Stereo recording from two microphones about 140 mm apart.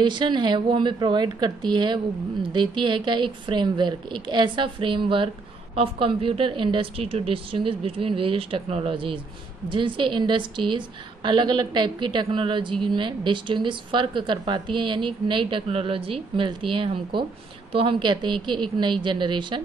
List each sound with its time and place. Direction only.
0.0 s a woman's voice: 35° right (ahead or behind)